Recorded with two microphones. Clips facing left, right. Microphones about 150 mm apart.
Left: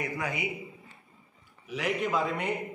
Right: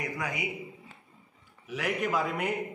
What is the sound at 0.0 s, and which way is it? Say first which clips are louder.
Speech: left 1 dB; 15° right (ahead or behind).